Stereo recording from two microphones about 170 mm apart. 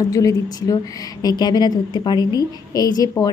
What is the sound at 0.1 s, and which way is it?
A woman's voice, 20° left (ahead or behind).